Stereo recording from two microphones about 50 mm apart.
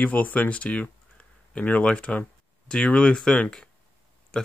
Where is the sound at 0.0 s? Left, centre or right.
Left.